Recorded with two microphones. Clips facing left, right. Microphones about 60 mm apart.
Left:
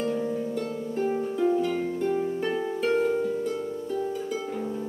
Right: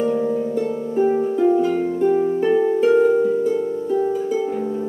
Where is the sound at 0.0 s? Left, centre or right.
Centre.